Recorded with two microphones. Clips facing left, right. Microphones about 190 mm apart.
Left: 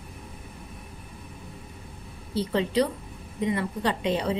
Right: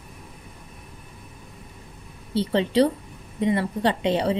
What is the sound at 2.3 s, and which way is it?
A woman's voice, 30° right (ahead or behind).